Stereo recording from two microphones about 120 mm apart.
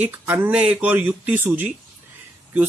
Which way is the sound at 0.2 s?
30° right (ahead or behind).